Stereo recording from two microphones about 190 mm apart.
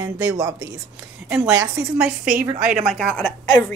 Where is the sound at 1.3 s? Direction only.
10° right (ahead or behind).